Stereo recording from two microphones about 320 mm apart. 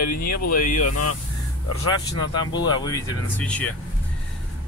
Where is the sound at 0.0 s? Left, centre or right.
Left.